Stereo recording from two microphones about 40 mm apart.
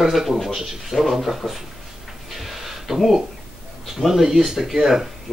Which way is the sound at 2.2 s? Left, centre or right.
Centre.